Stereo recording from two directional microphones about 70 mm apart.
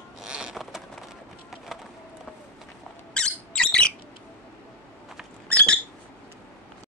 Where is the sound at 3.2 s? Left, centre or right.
Centre.